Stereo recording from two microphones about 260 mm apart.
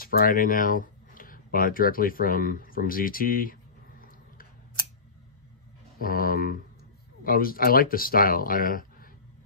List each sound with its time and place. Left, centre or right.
0.0 s speech: left
5.9 s speech: left